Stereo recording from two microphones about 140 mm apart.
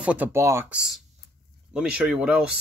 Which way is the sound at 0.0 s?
10° right (ahead or behind).